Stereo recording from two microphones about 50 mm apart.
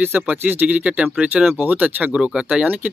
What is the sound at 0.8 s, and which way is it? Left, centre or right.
Speech, right.